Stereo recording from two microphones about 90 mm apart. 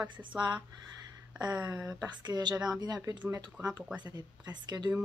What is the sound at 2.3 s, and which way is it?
Speech, 50° right (ahead or behind).